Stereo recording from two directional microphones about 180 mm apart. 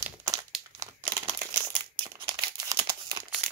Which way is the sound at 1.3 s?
25° right (ahead or behind).